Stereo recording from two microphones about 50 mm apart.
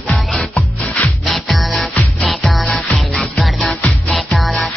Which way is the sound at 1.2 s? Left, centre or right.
Centre.